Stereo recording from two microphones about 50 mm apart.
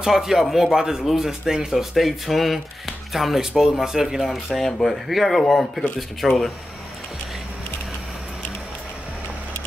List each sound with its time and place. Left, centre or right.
0.0 s speech: centre